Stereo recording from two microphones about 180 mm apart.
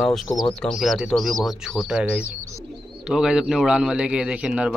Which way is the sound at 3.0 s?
5° right (ahead or behind).